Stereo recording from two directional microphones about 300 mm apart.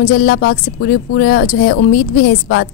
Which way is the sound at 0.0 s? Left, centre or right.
Left.